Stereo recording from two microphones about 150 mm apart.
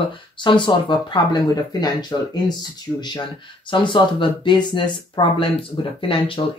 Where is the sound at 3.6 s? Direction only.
35° left (ahead or behind).